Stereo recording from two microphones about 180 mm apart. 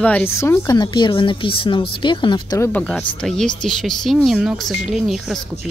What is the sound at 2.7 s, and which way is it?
Speech, 5° left (ahead or behind).